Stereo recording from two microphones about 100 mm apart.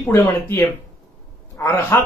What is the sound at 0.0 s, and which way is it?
Speech, 25° left (ahead or behind).